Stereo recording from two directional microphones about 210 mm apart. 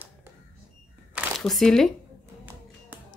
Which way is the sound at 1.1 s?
Centre (ahead or behind).